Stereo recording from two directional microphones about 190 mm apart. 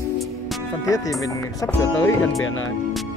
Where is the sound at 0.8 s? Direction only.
15° left (ahead or behind).